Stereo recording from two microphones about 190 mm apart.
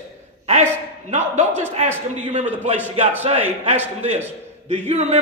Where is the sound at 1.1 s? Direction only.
35° right (ahead or behind).